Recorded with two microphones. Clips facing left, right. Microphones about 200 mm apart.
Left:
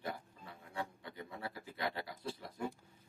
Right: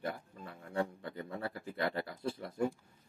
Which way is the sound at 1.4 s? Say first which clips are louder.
Right 4 dB; 55° right (ahead or behind).